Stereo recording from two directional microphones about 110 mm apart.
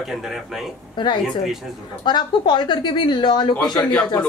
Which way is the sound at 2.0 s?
45° left (ahead or behind).